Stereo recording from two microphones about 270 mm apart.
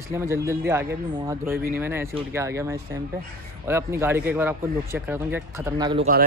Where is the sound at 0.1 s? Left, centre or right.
Centre.